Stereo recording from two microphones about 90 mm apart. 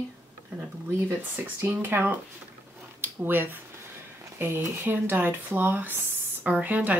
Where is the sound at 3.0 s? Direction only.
20° right (ahead or behind).